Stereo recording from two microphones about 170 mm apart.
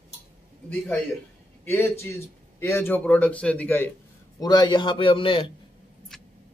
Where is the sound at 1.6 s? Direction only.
15° left (ahead or behind).